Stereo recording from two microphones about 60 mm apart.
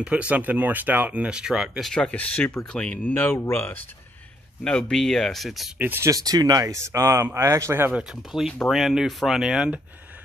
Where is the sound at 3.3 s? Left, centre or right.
Left.